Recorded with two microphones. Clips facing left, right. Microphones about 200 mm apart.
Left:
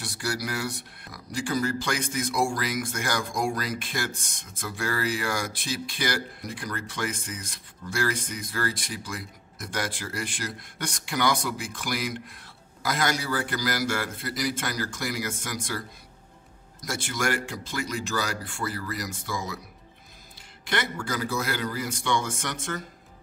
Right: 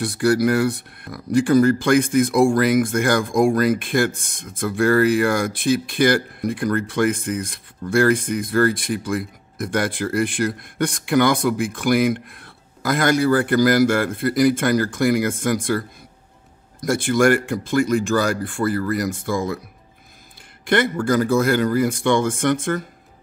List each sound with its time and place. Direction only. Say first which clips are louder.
0.0 s speech: right 14 dB; 55° right (ahead or behind)
16.8 s speech: right 13 dB; 55° right (ahead or behind)
20.6 s speech: right 11 dB; 55° right (ahead or behind)